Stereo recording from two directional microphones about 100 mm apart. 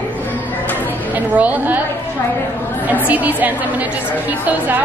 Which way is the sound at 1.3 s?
15° right (ahead or behind).